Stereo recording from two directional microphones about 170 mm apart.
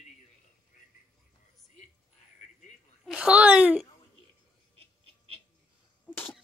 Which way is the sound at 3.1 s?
5° right (ahead or behind).